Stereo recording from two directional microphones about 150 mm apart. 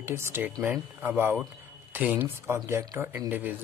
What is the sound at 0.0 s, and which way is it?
Speech, 15° right (ahead or behind).